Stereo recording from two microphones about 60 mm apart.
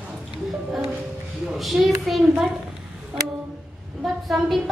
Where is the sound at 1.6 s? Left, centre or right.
Centre.